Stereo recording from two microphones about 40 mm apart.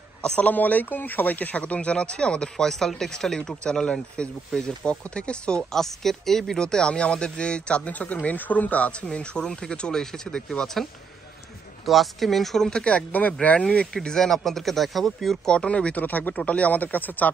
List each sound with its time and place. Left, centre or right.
0.4 s speech: left
1.6 s speech: left
2.5 s speech: centre
3.6 s speech: left
5.6 s speech: centre
6.6 s speech: left
9.0 s speech: left; by 12.6 s centre
12.6 s speech: left
13.9 s speech: centre
15.4 s speech: left
16.0 s speech: left
16.3 s speech: left